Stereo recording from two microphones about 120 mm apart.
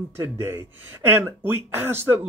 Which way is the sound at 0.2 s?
20° right (ahead or behind).